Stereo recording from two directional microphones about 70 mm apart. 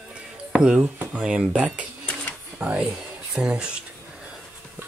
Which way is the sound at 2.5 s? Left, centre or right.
Right.